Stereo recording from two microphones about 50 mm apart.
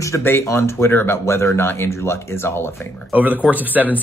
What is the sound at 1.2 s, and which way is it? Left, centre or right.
Speech, left.